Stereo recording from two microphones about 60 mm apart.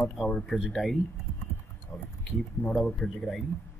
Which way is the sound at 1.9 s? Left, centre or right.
Centre.